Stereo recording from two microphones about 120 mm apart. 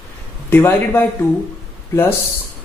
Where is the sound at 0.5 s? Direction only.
15° left (ahead or behind).